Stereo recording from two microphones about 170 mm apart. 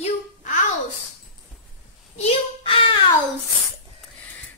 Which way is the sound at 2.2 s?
35° left (ahead or behind).